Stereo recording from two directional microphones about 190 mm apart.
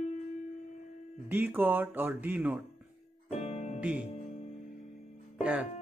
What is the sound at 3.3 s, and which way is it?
Music, 35° left (ahead or behind).